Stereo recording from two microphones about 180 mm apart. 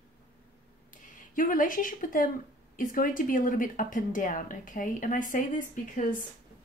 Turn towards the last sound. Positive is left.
turn(degrees=45)  # may be behind; listen again after turning